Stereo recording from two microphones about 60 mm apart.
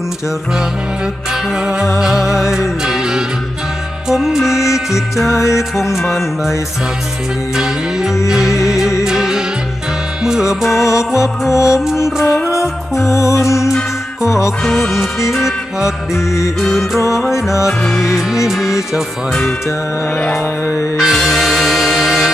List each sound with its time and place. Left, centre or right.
2.0 s music: centre
5.3 s music: left
6.0 s music: centre
7.5 s music: centre
10.7 s music: left
14.6 s music: centre
17.3 s music: left
17.6 s music: centre
18.1 s music: centre
21.0 s music: centre